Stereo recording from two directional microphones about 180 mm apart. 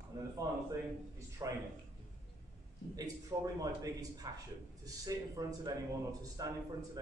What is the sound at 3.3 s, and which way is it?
A man's voice, 20° right (ahead or behind).